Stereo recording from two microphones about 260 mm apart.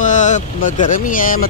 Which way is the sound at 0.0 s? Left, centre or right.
Left.